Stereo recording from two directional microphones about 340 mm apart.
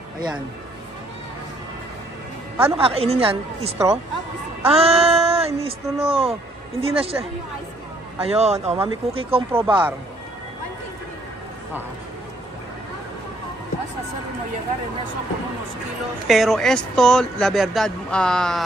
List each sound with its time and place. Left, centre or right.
2.6 s speech: centre
16.3 s speech: centre